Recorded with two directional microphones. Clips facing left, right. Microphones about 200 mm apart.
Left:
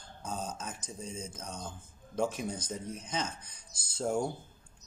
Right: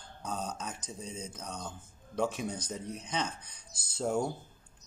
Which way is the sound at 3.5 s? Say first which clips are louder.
Right 1 dB; 60° right (ahead or behind).